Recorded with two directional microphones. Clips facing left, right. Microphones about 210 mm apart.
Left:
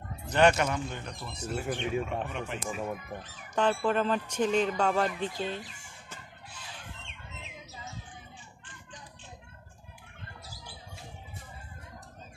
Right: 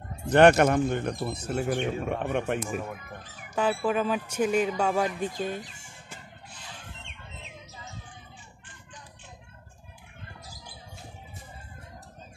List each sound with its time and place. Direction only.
0.3 s a man's voice: 55° right (ahead or behind)
3.5 s speech: 5° right (ahead or behind)